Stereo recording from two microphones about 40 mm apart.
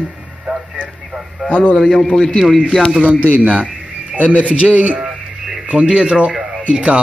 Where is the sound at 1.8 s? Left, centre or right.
Centre.